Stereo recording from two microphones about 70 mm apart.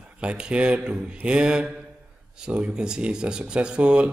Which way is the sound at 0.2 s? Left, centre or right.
Centre.